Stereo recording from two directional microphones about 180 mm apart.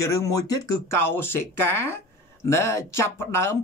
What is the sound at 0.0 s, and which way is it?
Speech, 20° left (ahead or behind).